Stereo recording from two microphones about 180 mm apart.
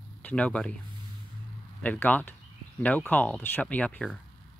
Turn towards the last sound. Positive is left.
turn(degrees=5)  # may be behind; listen again after turning